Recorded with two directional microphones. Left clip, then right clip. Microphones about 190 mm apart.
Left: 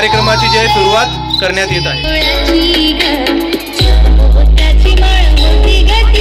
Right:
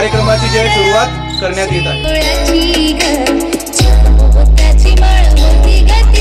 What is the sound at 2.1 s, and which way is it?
Music, 80° right.